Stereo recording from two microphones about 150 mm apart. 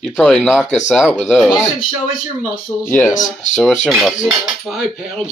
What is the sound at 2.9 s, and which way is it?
Speech, 15° left (ahead or behind).